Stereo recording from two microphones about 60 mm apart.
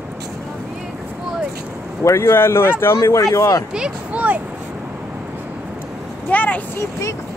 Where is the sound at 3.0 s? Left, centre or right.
Left.